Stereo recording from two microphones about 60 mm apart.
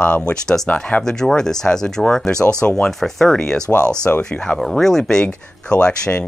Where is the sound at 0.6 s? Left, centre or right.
Left.